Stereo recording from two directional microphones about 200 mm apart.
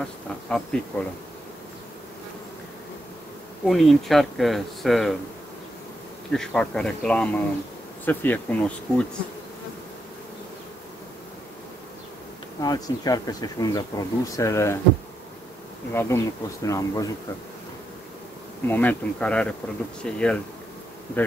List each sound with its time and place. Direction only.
0.0 s speech: 5° left (ahead or behind)
3.6 s speech: centre (ahead or behind)
6.3 s speech: 5° left (ahead or behind)
12.6 s speech: 20° left (ahead or behind)
15.9 s speech: 10° left (ahead or behind)
18.7 s speech: 10° left (ahead or behind)